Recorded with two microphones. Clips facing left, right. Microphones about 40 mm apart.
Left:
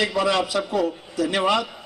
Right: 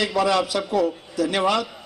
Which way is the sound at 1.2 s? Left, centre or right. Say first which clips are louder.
Even; centre.